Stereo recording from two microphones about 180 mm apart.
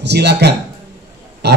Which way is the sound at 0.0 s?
65° right (ahead or behind).